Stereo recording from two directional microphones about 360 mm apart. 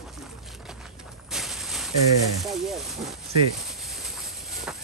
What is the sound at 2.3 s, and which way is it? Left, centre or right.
Speech, centre.